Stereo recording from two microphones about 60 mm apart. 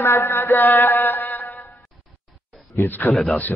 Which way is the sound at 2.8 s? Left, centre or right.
Left.